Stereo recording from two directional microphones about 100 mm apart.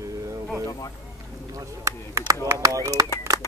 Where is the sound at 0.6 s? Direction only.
35° left (ahead or behind).